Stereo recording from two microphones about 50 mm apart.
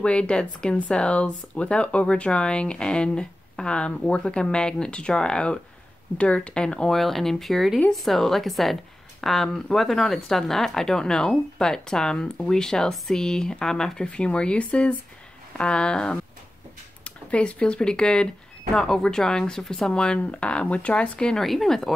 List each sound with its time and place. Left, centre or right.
0.0 s speech: left
6.9 s speech: centre
14.0 s speech: left; by 19.9 s centre
19.9 s speech: centre
21.4 s speech: centre